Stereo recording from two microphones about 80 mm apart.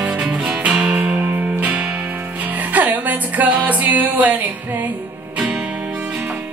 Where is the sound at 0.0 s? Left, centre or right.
Centre.